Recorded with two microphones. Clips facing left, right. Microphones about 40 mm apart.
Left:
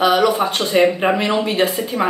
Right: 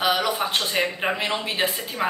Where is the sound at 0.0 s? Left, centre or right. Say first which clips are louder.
Left 8 dB; centre.